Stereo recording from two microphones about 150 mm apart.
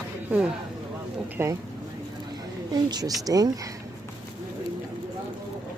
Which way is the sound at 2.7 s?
25° right (ahead or behind).